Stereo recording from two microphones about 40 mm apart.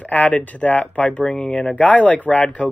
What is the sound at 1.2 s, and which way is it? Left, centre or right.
Speech, centre.